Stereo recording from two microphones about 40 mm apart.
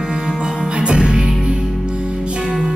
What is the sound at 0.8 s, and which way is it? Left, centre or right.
Music, right.